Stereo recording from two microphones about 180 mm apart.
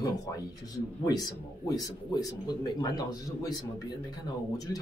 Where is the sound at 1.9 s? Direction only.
20° left (ahead or behind).